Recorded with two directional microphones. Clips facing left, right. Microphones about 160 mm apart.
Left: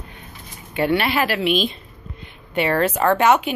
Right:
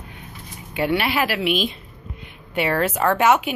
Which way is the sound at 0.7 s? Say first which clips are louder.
Left 2 dB; 10° right (ahead or behind).